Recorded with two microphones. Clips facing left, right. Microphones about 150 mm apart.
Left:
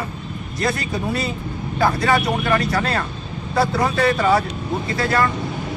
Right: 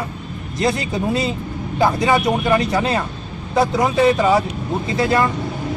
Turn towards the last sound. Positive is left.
turn(degrees=-20)  # may be behind; listen again after turning